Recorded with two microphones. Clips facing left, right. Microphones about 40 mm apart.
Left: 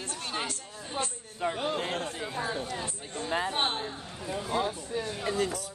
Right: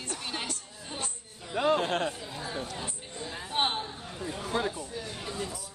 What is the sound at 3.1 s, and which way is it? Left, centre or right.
Speech, left.